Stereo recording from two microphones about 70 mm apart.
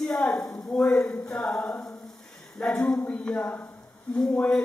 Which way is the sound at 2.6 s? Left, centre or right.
Centre.